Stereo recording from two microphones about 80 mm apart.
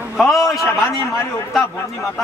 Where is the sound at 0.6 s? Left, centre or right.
Left.